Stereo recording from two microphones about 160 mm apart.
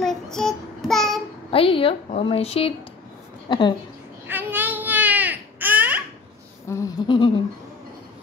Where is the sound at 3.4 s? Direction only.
30° left (ahead or behind).